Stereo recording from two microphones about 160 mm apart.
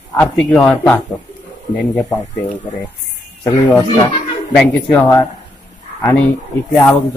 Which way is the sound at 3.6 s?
20° left (ahead or behind).